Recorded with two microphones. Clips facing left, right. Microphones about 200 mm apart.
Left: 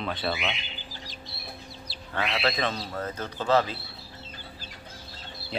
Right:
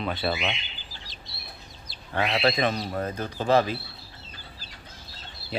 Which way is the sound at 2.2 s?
20° right (ahead or behind).